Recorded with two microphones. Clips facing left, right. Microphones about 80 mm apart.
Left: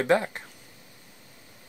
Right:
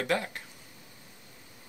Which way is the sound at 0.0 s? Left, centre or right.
Left.